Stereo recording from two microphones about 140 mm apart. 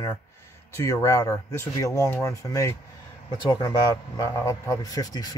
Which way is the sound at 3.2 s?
35° left (ahead or behind).